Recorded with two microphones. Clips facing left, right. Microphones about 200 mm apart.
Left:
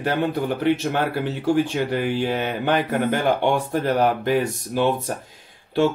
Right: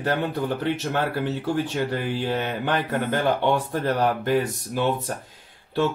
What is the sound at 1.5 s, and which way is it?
A man's voice, 15° left (ahead or behind).